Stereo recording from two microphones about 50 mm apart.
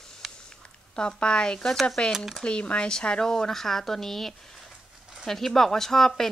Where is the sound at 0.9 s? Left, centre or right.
Centre.